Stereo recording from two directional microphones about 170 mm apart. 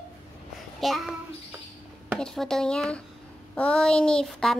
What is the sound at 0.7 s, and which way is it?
Child singing, centre (ahead or behind).